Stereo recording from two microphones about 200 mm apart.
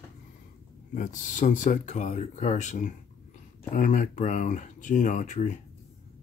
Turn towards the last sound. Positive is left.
turn(degrees=35)  # may be behind; listen again after turning